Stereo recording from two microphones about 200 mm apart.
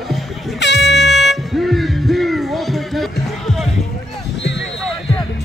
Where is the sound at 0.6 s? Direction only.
60° left (ahead or behind).